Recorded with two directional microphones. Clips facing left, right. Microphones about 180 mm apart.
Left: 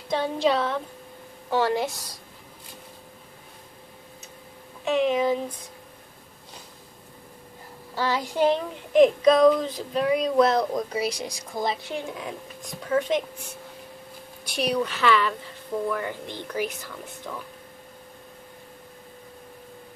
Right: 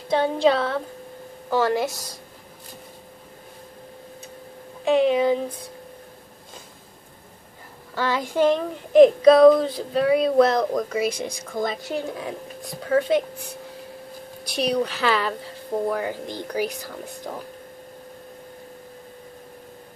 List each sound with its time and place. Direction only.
1.5 s speech: 40° right (ahead or behind)
4.8 s speech: 35° right (ahead or behind)
7.9 s speech: 55° right (ahead or behind)